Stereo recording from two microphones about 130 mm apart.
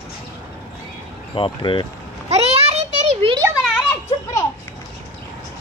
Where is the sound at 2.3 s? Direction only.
50° right (ahead or behind).